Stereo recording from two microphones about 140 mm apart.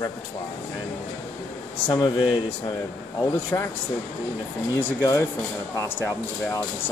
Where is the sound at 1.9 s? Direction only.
35° left (ahead or behind).